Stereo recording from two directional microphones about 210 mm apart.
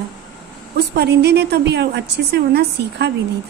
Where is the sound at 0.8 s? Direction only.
50° right (ahead or behind).